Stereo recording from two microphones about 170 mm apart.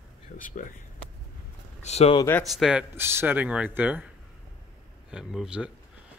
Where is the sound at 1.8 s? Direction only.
40° left (ahead or behind).